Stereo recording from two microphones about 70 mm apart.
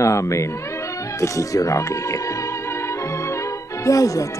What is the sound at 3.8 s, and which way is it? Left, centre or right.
Speech, left.